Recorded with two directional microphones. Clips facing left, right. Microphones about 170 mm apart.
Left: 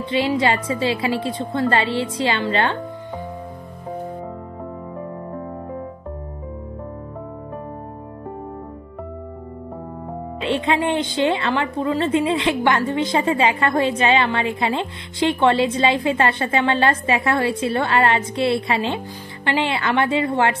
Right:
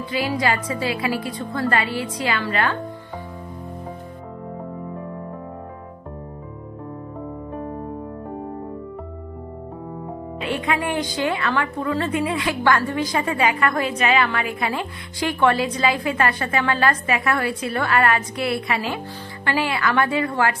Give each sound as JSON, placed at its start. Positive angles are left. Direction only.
{"t": 0.0, "sound": "a woman's voice", "side_deg": 25}
{"t": 10.4, "sound": "a woman's voice", "side_deg": 25}